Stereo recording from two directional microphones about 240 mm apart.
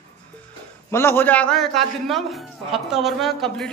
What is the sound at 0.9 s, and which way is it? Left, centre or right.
A man's voice, centre.